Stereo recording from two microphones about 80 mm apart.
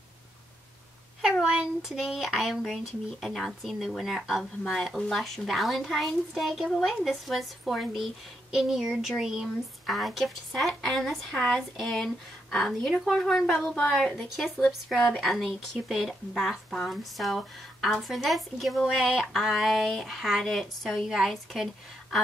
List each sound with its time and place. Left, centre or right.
1.4 s speech: centre